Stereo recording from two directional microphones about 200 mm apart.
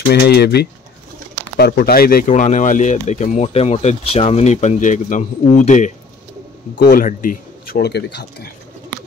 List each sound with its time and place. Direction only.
0.1 s speech: 55° left (ahead or behind)